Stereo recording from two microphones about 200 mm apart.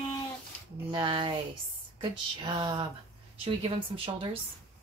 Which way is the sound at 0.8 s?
25° right (ahead or behind).